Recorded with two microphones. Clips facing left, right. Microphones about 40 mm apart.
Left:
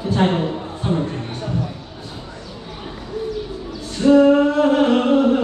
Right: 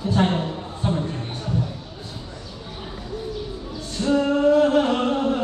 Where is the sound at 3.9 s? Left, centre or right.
Left.